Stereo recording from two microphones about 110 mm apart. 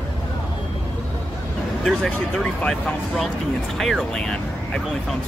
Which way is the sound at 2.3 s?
5° left (ahead or behind).